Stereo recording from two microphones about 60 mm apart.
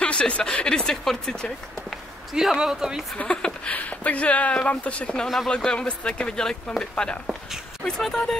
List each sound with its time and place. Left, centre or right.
0.0 s speech: centre
2.3 s a man's voice: centre
3.2 s speech: left